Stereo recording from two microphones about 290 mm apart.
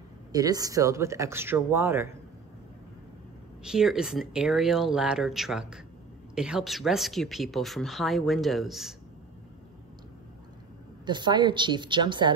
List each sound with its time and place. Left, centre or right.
0.3 s speech: centre
3.6 s speech: centre
11.1 s speech: centre